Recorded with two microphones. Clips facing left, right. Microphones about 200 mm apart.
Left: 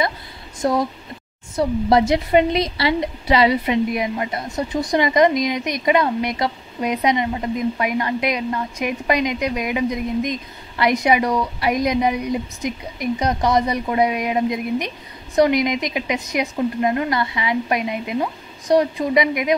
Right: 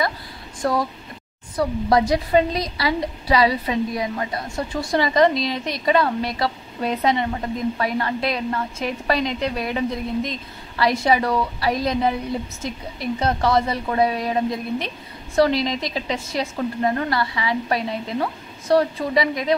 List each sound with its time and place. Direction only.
0.6 s a woman's voice: 20° left (ahead or behind)